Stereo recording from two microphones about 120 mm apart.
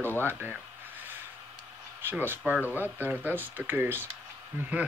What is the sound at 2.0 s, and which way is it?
Speech, 15° right (ahead or behind).